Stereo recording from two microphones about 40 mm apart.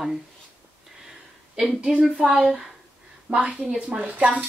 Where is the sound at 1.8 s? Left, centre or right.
Centre.